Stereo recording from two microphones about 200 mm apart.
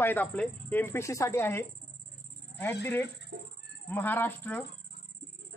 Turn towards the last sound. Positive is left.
turn(degrees=10)  # may be behind; listen again after turning